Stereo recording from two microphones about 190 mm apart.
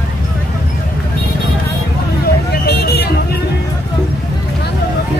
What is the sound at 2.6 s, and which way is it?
Vehicle, 60° left (ahead or behind).